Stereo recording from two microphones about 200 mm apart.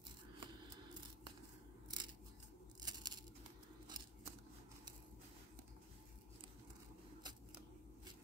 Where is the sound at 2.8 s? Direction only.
20° right (ahead or behind).